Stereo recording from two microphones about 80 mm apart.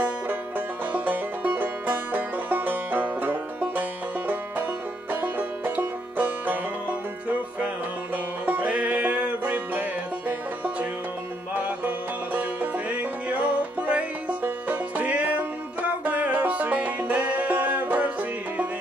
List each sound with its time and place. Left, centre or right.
0.9 s music: right
5.8 s banjo: right
8.5 s music: right
12.9 s music: centre